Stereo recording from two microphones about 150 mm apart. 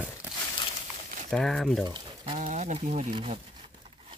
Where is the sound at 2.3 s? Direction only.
50° right (ahead or behind).